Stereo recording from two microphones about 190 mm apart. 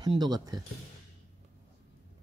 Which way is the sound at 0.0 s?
20° right (ahead or behind).